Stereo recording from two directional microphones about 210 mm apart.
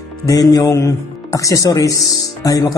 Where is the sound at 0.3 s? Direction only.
15° left (ahead or behind).